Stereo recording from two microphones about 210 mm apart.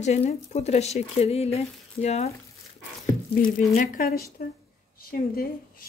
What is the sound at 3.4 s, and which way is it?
A woman's voice, 40° left (ahead or behind).